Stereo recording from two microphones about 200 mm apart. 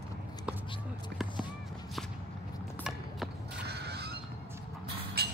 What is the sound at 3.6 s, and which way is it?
Goose, 55° right (ahead or behind).